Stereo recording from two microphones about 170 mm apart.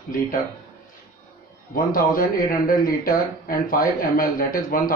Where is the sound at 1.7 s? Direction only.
55° left (ahead or behind).